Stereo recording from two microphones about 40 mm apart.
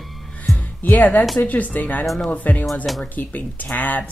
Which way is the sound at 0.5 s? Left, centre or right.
Centre.